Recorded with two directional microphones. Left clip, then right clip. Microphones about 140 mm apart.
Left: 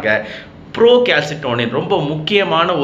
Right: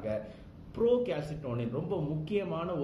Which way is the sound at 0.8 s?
15° right (ahead or behind).